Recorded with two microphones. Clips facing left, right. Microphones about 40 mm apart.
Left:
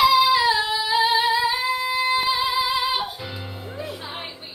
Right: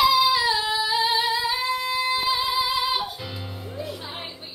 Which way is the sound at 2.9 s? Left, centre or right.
Centre.